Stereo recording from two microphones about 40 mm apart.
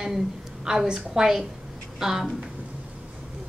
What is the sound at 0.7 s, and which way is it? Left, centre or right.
A woman's voice, centre.